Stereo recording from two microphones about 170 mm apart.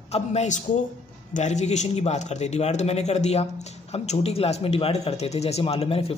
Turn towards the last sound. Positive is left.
turn(degrees=35)  # may be behind; listen again after turning